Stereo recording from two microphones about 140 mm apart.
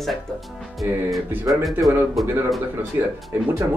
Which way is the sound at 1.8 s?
Centre (ahead or behind).